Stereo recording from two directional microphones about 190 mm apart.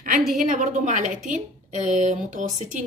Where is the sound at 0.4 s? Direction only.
45° right (ahead or behind).